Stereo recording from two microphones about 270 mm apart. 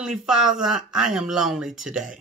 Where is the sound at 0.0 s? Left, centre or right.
Centre.